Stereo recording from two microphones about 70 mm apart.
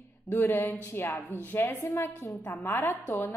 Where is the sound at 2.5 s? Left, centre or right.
Left.